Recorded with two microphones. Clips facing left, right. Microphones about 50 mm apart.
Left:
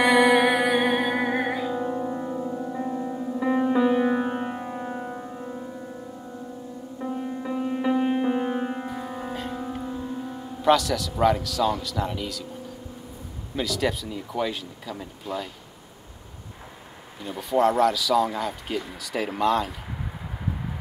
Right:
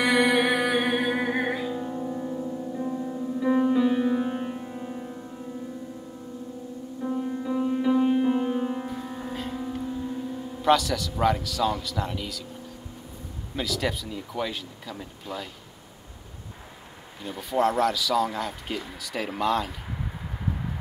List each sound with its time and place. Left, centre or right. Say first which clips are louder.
0.0 s music: left 4 dB; centre
1.7 s music: left 3 dB; left
3.5 s music: left 2 dB; centre
4.6 s music: left 3 dB; left
5.3 s music: left 2 dB; left
7.1 s music: right 2 dB; centre
9.3 s music: right 1 dB; centre
9.6 s music: even; centre
10.6 s speech: left 1 dB; centre
13.6 s speech: left 3 dB; centre
17.2 s speech: left 3 dB; centre